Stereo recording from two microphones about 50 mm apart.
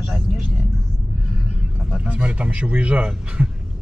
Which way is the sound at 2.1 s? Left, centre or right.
Right.